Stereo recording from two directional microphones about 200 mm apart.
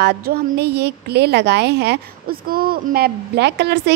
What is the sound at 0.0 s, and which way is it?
A woman's voice, 50° right (ahead or behind).